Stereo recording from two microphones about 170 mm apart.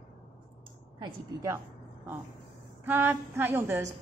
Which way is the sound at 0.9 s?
25° right (ahead or behind).